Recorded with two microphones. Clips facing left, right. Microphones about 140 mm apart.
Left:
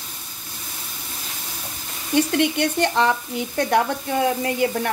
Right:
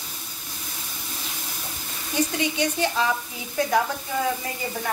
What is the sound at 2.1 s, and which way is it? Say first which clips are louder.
Speech: left 6 dB; 60° left (ahead or behind).